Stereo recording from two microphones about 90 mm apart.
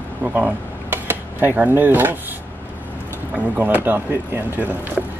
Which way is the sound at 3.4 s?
20° right (ahead or behind).